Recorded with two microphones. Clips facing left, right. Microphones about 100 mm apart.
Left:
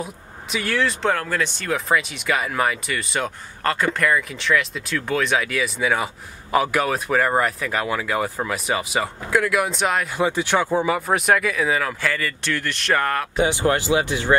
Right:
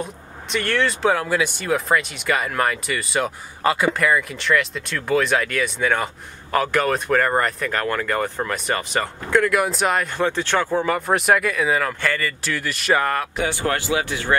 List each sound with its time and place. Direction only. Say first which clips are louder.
0.0 s speech: right 1 dB; 5° left (ahead or behind)
13.4 s speech: left 3 dB; 20° left (ahead or behind)